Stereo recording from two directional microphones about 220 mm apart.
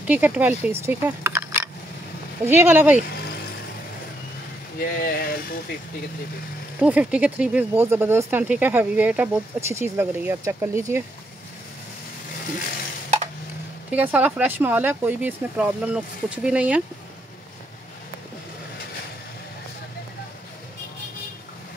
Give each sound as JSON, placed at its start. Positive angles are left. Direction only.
{"t": 0.0, "sound": "speech", "side_deg": -5}
{"t": 4.7, "sound": "speech", "side_deg": 40}
{"t": 6.8, "sound": "speech", "side_deg": -5}
{"t": 13.8, "sound": "speech", "side_deg": -5}